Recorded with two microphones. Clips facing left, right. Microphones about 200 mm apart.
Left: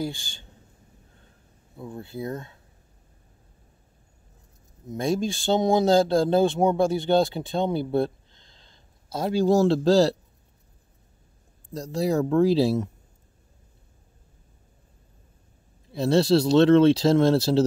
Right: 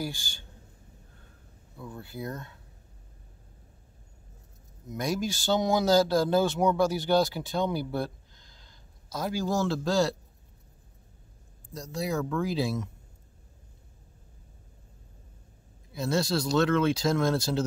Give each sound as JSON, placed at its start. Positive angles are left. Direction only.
{"t": 0.0, "sound": "speech", "side_deg": 25}
{"t": 1.8, "sound": "speech", "side_deg": 25}
{"t": 4.8, "sound": "speech", "side_deg": 25}
{"t": 11.7, "sound": "speech", "side_deg": 35}
{"t": 15.9, "sound": "speech", "side_deg": 30}